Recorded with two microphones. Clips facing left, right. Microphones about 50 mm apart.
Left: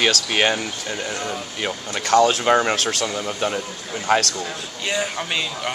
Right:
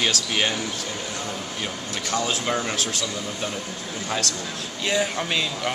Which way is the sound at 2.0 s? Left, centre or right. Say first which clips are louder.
Left 10 dB; left.